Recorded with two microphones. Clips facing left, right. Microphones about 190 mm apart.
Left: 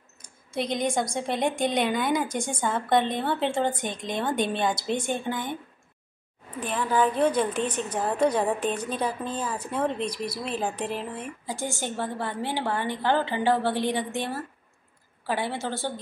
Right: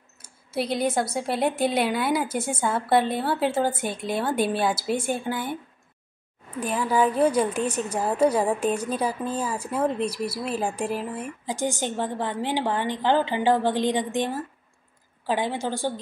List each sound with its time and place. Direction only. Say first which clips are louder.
0.2 s a woman's voice: right 2 dB; 5° right (ahead or behind)
6.6 s a woman's voice: right 2 dB; 10° right (ahead or behind)